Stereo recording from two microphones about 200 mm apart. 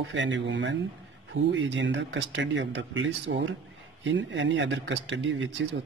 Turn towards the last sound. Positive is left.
turn(degrees=-70)  # may be behind; listen again after turning